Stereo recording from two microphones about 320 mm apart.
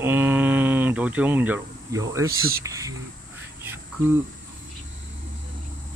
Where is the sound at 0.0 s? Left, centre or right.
Centre.